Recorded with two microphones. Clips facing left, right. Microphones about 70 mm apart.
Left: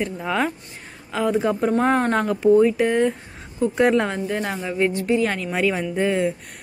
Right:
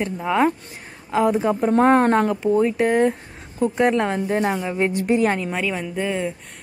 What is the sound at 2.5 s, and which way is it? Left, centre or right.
A woman's voice, centre.